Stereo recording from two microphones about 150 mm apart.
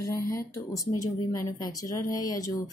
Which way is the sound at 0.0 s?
20° left (ahead or behind).